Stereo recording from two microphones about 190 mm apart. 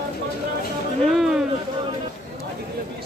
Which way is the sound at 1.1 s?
Centre (ahead or behind).